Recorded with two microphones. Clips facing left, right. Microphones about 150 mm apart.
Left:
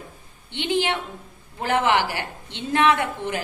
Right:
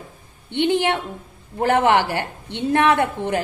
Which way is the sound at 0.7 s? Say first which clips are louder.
Right 2 dB; 60° right (ahead or behind).